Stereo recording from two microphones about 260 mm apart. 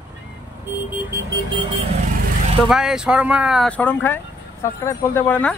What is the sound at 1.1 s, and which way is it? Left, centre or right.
Alarm clock, centre.